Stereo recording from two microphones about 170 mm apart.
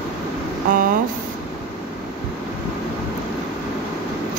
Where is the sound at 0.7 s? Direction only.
50° right (ahead or behind).